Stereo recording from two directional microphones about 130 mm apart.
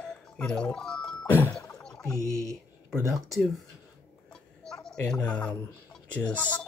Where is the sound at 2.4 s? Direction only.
25° right (ahead or behind).